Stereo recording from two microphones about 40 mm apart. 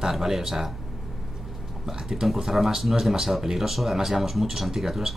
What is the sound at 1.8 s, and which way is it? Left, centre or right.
Speech, centre.